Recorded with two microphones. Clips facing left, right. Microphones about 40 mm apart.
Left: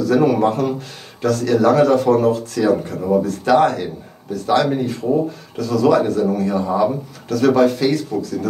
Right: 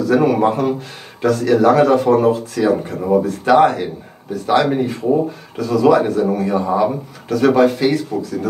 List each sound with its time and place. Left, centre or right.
0.0 s speech: centre